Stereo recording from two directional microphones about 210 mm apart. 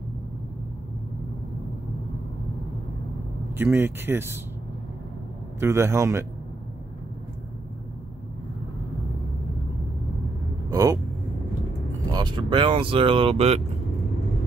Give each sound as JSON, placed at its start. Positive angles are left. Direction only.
{"t": 3.5, "sound": "speech", "side_deg": -10}
{"t": 5.6, "sound": "speech", "side_deg": -15}
{"t": 10.7, "sound": "vehicle", "side_deg": -15}
{"t": 12.1, "sound": "speech", "side_deg": -20}